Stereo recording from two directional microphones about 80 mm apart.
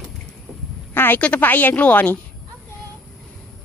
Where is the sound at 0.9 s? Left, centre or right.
Left.